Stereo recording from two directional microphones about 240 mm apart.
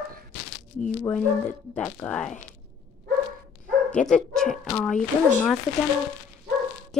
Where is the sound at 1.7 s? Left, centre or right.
Centre.